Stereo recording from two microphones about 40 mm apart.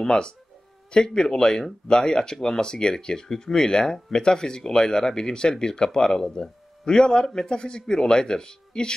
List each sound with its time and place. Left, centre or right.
0.0 s speech: centre